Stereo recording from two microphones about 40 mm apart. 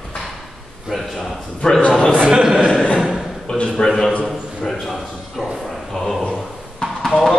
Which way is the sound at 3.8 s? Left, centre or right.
Centre.